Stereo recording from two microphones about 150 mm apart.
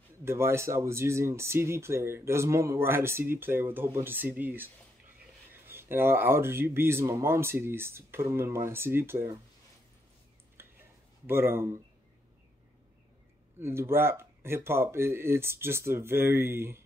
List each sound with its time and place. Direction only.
0.2 s speech: 15° right (ahead or behind)
10.6 s a sound: 15° right (ahead or behind)
11.2 s speech: 15° right (ahead or behind)
13.6 s speech: 15° right (ahead or behind)